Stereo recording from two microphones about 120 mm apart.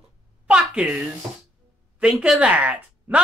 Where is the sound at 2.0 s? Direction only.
10° right (ahead or behind).